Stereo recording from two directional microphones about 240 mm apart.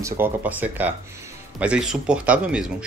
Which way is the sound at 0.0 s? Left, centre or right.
Centre.